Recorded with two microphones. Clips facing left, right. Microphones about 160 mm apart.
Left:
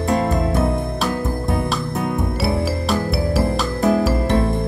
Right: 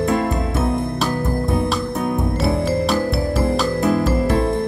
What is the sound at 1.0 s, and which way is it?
Music, centre (ahead or behind).